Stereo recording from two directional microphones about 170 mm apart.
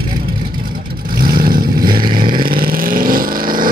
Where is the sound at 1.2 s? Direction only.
60° right (ahead or behind).